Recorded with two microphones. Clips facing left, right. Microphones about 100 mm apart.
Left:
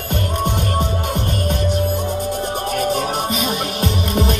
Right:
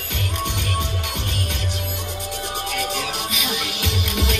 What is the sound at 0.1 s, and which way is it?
Music, 45° left (ahead or behind).